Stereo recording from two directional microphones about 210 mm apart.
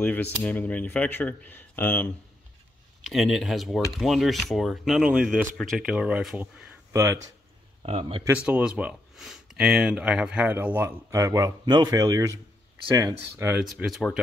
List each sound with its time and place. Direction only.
0.0 s speech: 10° left (ahead or behind)
3.1 s speech: centre (ahead or behind)
7.8 s speech: 25° right (ahead or behind)
8.2 s speech: 10° right (ahead or behind)